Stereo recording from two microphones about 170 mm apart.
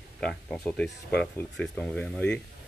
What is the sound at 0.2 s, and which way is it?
Speech, 5° left (ahead or behind).